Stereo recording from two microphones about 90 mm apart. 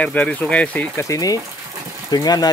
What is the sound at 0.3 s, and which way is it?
Speech, 15° left (ahead or behind).